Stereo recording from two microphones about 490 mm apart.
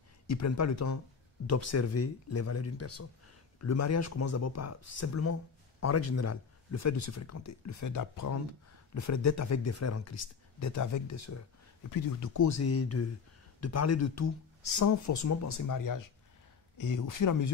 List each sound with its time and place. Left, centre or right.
0.3 s speech: left